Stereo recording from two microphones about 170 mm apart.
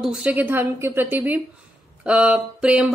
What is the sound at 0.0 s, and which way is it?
A woman's voice, 5° right (ahead or behind).